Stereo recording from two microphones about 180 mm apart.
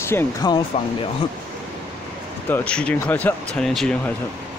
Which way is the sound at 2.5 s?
10° left (ahead or behind).